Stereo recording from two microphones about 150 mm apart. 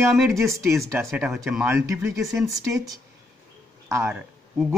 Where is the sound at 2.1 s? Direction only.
Centre (ahead or behind).